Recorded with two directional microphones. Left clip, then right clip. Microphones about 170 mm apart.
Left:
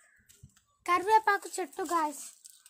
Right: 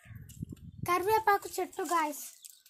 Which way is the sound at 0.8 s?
25° right (ahead or behind).